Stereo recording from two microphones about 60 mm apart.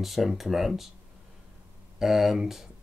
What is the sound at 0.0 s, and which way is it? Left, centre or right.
Speech, centre.